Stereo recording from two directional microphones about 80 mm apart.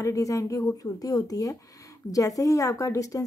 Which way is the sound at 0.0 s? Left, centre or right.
Left.